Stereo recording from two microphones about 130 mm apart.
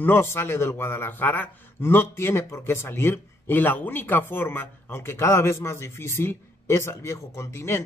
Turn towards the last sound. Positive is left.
turn(degrees=20)  # may be behind; listen again after turning